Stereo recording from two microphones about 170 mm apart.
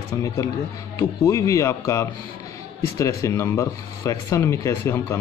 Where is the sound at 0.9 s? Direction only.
20° left (ahead or behind).